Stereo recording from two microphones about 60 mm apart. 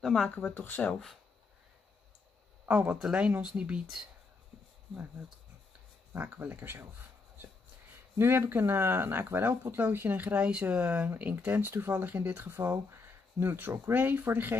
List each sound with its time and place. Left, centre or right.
0.0 s speech: centre
0.6 s speech: left
0.8 s speech: centre
2.7 s speech: right
3.0 s speech: centre
6.1 s speech: right
8.2 s speech: right